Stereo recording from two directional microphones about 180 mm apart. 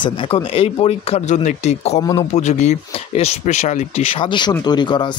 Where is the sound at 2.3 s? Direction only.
40° left (ahead or behind); by 5.1 s 25° left (ahead or behind).